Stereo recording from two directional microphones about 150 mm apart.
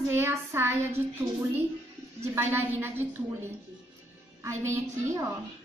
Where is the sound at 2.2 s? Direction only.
15° right (ahead or behind).